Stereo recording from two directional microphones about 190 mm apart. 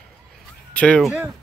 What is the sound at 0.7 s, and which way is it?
Speech, 5° left (ahead or behind).